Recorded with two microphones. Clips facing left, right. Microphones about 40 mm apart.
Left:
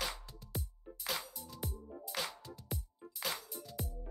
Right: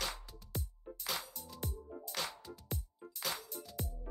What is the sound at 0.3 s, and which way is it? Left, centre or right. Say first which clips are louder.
Music: even; centre.